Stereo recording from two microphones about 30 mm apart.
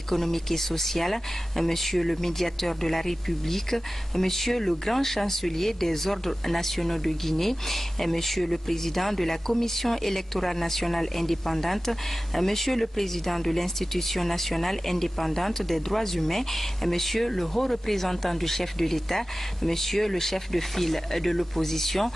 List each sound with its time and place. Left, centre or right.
0.1 s speech: centre